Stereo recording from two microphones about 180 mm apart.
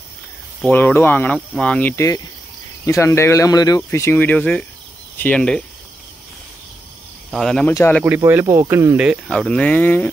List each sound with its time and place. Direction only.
0.6 s speech: 10° left (ahead or behind)
7.3 s speech: centre (ahead or behind)
7.7 s speech: 15° left (ahead or behind)
8.0 s speech: 10° right (ahead or behind)
9.3 s speech: 5° left (ahead or behind)